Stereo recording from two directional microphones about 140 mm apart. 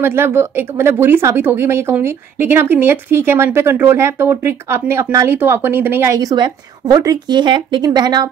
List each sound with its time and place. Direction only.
0.0 s speech: 15° right (ahead or behind)
6.1 s a woman's voice: 30° right (ahead or behind)